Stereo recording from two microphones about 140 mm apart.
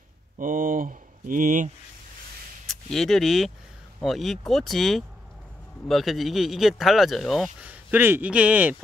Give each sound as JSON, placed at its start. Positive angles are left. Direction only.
{"t": 0.4, "sound": "speech", "side_deg": -75}
{"t": 2.6, "sound": "speech", "side_deg": 0}
{"t": 7.6, "sound": "speech", "side_deg": -15}